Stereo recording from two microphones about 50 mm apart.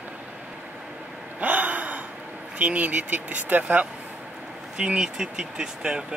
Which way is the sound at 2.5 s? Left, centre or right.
Right.